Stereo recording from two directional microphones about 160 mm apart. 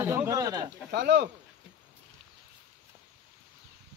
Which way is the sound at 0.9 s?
90° right.